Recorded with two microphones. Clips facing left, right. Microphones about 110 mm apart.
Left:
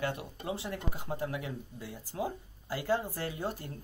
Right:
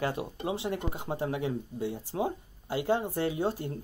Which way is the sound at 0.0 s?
30° right (ahead or behind).